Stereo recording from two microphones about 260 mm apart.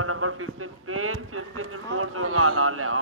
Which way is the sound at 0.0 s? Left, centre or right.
Right.